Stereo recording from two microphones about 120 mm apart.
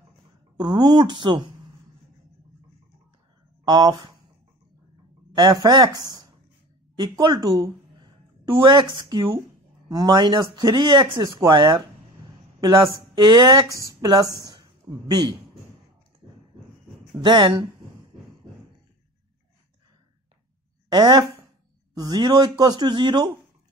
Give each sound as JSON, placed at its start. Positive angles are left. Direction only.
{"t": 0.6, "sound": "speech", "side_deg": -35}
{"t": 3.6, "sound": "speech", "side_deg": -35}
{"t": 5.3, "sound": "speech", "side_deg": -40}
{"t": 17.2, "sound": "speech", "side_deg": -40}
{"t": 20.9, "sound": "speech", "side_deg": -35}